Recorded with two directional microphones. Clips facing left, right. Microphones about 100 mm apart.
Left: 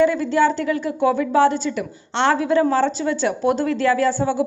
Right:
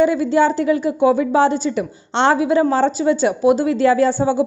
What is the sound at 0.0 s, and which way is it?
A woman's voice, 15° right (ahead or behind).